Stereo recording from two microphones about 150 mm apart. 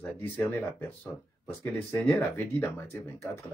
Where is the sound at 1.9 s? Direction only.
15° left (ahead or behind).